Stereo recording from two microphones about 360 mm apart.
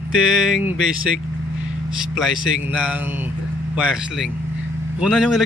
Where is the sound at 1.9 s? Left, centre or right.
Centre.